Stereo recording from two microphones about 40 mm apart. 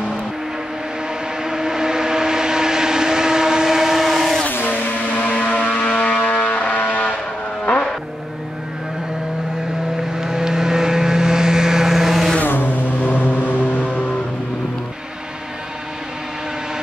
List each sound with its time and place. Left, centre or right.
1.4 s vehicle: centre
4.5 s vehicle: left
10.1 s vehicle: centre
12.4 s vehicle: left